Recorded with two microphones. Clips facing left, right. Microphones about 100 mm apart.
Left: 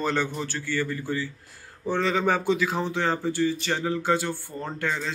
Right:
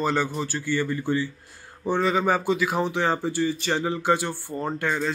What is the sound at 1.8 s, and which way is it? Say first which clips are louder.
Speech: right 2 dB; 10° right (ahead or behind).